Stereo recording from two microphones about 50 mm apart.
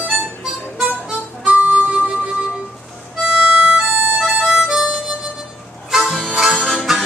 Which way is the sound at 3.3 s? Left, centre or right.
Centre.